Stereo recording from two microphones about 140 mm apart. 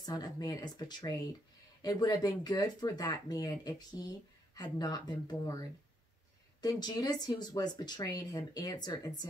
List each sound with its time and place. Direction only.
0.0 s speech: 30° left (ahead or behind)